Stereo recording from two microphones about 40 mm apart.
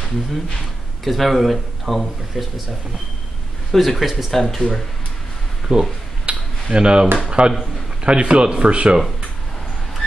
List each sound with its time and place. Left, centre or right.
1.0 s speech: centre
3.7 s speech: centre
5.7 s speech: centre
6.2 s a sound: right
7.2 s speech: right